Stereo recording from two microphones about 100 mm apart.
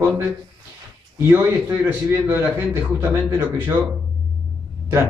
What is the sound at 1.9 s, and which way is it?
A man's voice, 20° right (ahead or behind).